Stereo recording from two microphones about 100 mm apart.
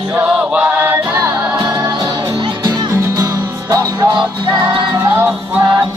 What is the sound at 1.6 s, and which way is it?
Music, 45° right (ahead or behind).